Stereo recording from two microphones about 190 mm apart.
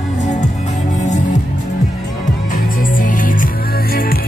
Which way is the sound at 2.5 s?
45° left (ahead or behind).